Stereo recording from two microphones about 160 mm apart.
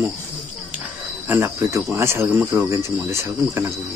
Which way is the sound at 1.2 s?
15° right (ahead or behind).